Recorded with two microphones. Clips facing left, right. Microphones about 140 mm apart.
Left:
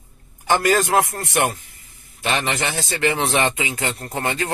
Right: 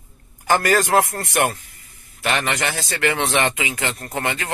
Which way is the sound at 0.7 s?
20° left (ahead or behind).